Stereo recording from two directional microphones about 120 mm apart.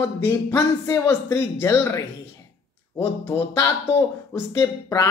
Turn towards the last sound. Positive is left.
turn(degrees=25)  # may be behind; listen again after turning